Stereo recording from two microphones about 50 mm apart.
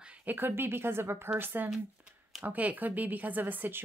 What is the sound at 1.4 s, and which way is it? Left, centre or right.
Speech, right.